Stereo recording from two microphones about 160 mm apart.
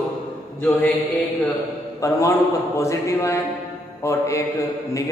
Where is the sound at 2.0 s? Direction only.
20° left (ahead or behind).